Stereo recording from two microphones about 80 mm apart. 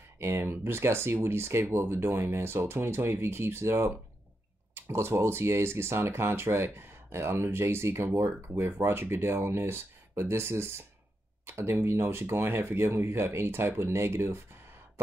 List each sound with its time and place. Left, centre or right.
0.2 s speech: right